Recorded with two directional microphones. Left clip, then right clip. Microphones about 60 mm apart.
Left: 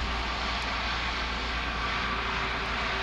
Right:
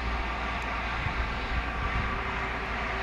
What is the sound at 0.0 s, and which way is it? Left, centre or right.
Vehicle, left.